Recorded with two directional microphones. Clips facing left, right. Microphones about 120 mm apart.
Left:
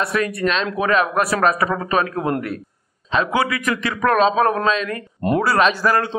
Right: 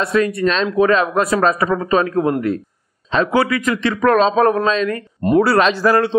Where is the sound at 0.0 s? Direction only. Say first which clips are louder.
Right 4 dB; 25° right (ahead or behind).